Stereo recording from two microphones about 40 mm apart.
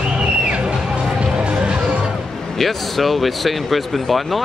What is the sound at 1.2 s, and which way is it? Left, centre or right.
Music, right.